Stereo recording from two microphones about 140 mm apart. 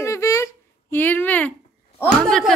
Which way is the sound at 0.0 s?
20° left (ahead or behind).